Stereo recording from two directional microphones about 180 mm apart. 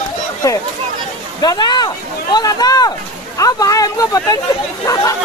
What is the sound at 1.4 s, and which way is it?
Speech, 20° left (ahead or behind).